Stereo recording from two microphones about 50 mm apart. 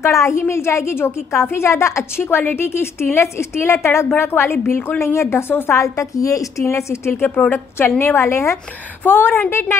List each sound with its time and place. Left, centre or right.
0.0 s a woman's voice: left
0.9 s a woman's voice: left
2.2 s a woman's voice: left
5.0 s a woman's voice: left
5.5 s a woman's voice: left
5.8 s a woman's voice: left
7.2 s a woman's voice: left
7.5 s a woman's voice: left
8.0 s a woman's voice: left
9.0 s a woman's voice: left
9.5 s a woman's voice: left